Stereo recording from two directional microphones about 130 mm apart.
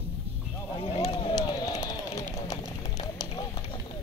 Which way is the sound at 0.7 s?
50° left (ahead or behind).